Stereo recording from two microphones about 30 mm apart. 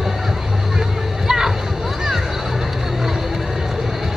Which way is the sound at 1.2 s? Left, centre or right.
Centre.